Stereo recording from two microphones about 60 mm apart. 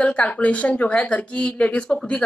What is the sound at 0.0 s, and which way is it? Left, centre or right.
A woman's voice, centre.